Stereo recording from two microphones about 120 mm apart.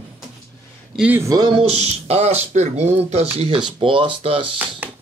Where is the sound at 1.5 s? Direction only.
60° right (ahead or behind).